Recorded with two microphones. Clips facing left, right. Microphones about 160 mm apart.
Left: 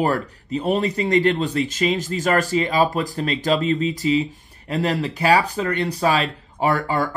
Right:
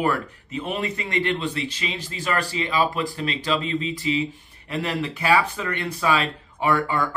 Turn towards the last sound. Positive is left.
turn(degrees=40)  # may be behind; listen again after turning